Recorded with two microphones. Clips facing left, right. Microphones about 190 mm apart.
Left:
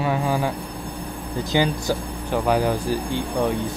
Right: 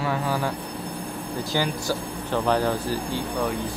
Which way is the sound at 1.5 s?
20° left (ahead or behind).